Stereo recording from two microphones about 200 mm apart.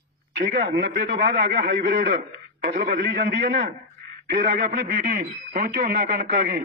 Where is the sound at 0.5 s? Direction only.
60° right (ahead or behind).